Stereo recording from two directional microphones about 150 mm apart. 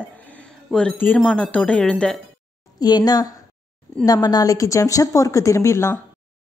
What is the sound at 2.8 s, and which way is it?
A woman's voice, 25° left (ahead or behind).